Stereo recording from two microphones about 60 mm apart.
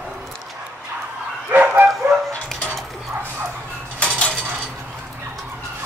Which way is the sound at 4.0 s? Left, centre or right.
Centre.